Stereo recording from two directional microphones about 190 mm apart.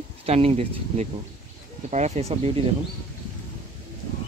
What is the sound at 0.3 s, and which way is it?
Speech, 30° right (ahead or behind).